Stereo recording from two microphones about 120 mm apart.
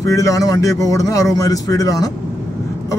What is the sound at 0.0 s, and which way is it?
Speech, 25° left (ahead or behind).